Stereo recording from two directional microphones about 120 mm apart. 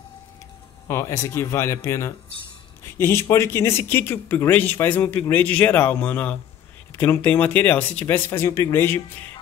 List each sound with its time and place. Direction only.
0.8 s speech: 25° left (ahead or behind)